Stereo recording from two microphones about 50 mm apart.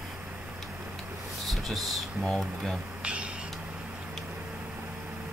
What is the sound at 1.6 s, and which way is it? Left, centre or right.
Speech, centre.